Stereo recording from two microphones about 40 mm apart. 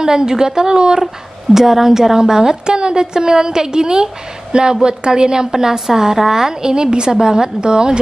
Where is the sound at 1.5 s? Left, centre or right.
Centre.